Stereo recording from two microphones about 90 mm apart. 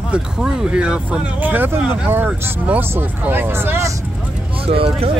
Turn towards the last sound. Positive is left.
turn(degrees=-90)